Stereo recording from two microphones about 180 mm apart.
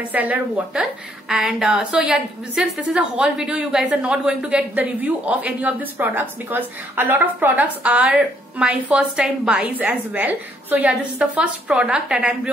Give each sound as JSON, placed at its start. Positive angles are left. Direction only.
{"t": 0.1, "sound": "a woman's voice", "side_deg": -10}